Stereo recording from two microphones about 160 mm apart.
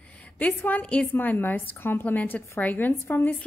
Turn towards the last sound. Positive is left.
turn(degrees=10)  # may be behind; listen again after turning